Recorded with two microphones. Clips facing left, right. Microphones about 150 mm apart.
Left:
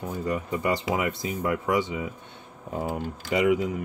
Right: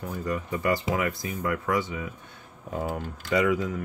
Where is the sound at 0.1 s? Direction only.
25° left (ahead or behind).